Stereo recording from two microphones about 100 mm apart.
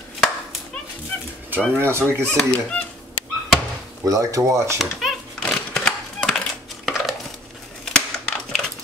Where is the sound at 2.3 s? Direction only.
10° left (ahead or behind).